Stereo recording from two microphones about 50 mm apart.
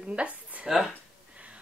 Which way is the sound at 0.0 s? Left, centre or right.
Right.